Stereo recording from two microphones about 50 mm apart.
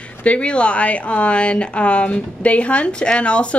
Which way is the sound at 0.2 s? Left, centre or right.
Left.